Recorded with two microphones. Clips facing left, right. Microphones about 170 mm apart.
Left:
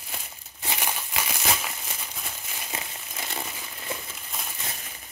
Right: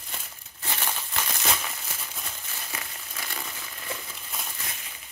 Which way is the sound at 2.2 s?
15° left (ahead or behind).